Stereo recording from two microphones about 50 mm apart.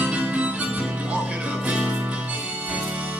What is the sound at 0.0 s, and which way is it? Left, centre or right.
Music, right.